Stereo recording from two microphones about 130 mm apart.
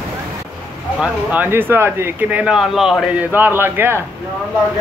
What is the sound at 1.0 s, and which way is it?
Speech, 10° right (ahead or behind).